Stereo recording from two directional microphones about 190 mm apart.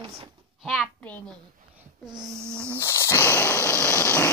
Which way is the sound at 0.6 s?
Centre (ahead or behind).